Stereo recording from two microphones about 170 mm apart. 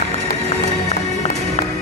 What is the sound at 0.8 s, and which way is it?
Music, 40° left (ahead or behind).